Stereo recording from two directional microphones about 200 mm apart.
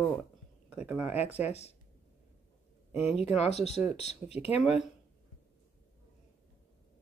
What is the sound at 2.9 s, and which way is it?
Speech, 30° left (ahead or behind).